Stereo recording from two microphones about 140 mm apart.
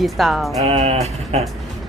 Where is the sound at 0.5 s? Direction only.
45° right (ahead or behind).